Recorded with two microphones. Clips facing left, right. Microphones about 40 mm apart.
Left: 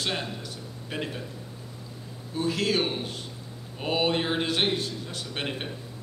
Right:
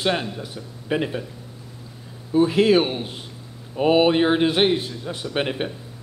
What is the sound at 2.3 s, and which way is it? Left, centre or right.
A man's voice, right.